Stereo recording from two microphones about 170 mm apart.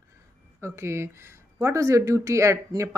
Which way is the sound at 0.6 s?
15° right (ahead or behind).